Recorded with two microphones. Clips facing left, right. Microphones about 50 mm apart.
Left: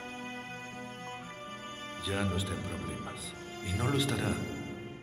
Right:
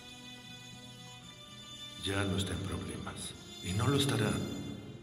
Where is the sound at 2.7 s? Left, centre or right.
Left.